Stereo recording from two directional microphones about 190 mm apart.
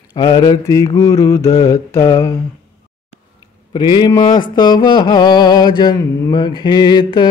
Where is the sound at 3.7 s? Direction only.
20° left (ahead or behind).